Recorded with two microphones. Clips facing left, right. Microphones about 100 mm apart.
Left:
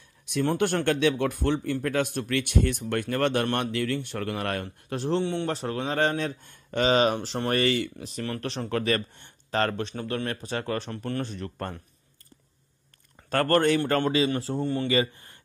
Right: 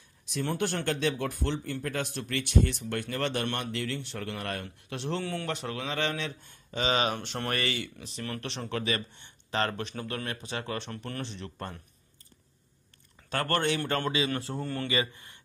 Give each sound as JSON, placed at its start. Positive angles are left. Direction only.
{"t": 0.3, "sound": "speech", "side_deg": 55}
{"t": 4.6, "sound": "speech", "side_deg": 35}
{"t": 5.2, "sound": "speech", "side_deg": 25}
{"t": 5.5, "sound": "speech", "side_deg": 35}
{"t": 6.9, "sound": "speech", "side_deg": 40}
{"t": 13.3, "sound": "speech", "side_deg": 40}
{"t": 14.3, "sound": "speech", "side_deg": 25}
{"t": 14.9, "sound": "speech", "side_deg": 35}